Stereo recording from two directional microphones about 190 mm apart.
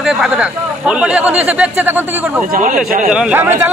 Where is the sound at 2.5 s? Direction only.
45° right (ahead or behind).